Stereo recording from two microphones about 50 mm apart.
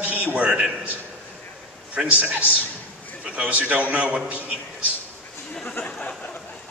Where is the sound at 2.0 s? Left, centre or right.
Right.